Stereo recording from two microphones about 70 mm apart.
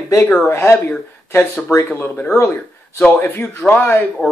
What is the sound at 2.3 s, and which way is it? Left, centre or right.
Speech, left.